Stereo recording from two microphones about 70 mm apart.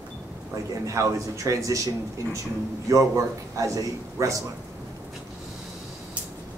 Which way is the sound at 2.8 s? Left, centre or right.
Right.